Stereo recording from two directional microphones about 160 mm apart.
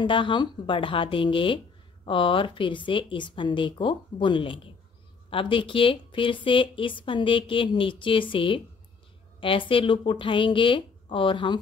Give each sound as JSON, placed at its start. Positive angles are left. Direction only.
{"t": 0.0, "sound": "a woman's voice", "side_deg": 30}